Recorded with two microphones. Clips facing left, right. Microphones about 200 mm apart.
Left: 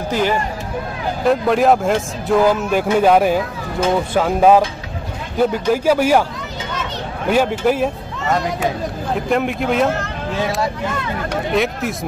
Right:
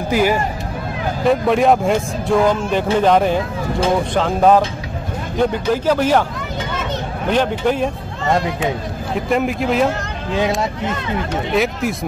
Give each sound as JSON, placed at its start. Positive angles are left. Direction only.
{"t": 0.1, "sound": "speech", "side_deg": -10}
{"t": 7.2, "sound": "speech", "side_deg": 5}
{"t": 9.3, "sound": "speech", "side_deg": 0}
{"t": 11.5, "sound": "speech", "side_deg": 0}